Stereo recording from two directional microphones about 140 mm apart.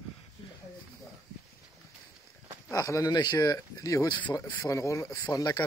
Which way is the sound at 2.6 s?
20° left (ahead or behind).